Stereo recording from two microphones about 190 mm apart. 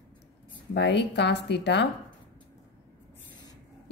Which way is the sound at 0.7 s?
65° left (ahead or behind).